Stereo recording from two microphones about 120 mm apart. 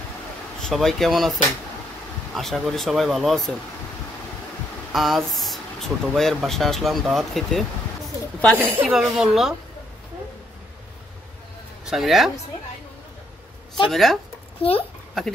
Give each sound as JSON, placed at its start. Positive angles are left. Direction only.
{"t": 0.6, "sound": "speech", "side_deg": 5}
{"t": 2.3, "sound": "speech", "side_deg": 0}
{"t": 4.9, "sound": "speech", "side_deg": 0}
{"t": 8.5, "sound": "speech", "side_deg": -20}
{"t": 8.8, "sound": "speech", "side_deg": 0}
{"t": 11.8, "sound": "speech", "side_deg": 0}
{"t": 13.8, "sound": "speech", "side_deg": 0}
{"t": 14.6, "sound": "a child's voice", "side_deg": 50}
{"t": 15.2, "sound": "speech", "side_deg": 5}